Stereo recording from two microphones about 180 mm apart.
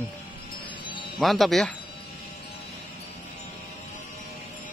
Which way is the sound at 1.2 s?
Centre (ahead or behind).